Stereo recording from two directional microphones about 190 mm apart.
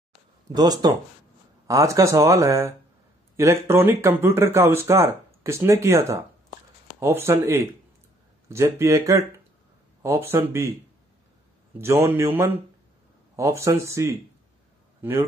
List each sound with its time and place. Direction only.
0.6 s speech: 20° right (ahead or behind)
12.1 s a man's voice: 15° right (ahead or behind)